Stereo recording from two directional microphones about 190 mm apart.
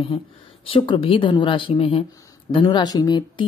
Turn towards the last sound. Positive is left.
turn(degrees=20)  # may be behind; listen again after turning